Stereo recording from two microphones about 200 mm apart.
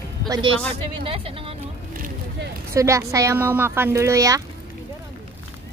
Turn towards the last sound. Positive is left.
turn(degrees=-15)  # may be behind; listen again after turning